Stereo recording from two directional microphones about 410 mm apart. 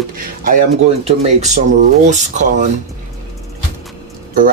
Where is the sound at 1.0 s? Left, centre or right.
Centre.